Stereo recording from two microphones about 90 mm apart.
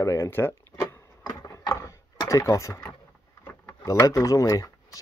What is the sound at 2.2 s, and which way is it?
Speech, 35° left (ahead or behind).